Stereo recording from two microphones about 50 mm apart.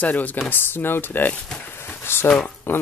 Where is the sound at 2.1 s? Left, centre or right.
Left.